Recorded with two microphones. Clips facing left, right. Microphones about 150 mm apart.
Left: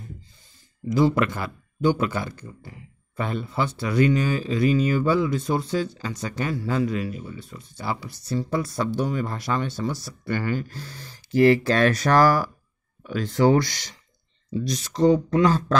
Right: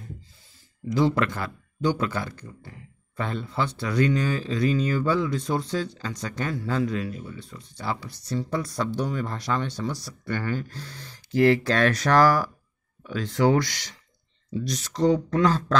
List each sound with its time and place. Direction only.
0.8 s speech: 5° left (ahead or behind)
13.4 s speech: 30° left (ahead or behind)
14.7 s speech: 10° left (ahead or behind)